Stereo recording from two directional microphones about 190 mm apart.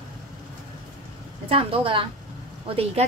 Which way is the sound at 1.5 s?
30° right (ahead or behind).